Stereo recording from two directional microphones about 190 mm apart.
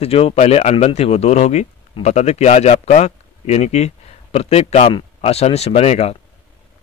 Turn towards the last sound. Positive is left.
turn(degrees=35)  # may be behind; listen again after turning